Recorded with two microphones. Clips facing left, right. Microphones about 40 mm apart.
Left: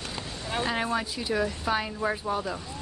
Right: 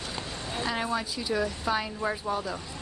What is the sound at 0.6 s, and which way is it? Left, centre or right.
Speech, centre.